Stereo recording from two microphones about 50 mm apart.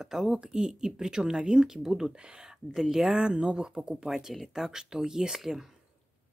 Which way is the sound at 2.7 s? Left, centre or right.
Centre.